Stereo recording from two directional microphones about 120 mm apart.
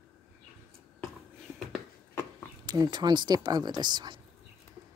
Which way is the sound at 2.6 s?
35° right (ahead or behind).